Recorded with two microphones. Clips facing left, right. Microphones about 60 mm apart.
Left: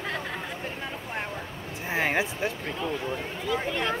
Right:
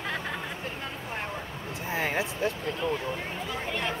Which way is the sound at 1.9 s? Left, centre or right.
Left.